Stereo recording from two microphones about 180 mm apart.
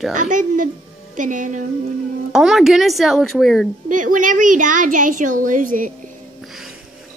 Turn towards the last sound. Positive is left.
turn(degrees=-45)  # may be behind; listen again after turning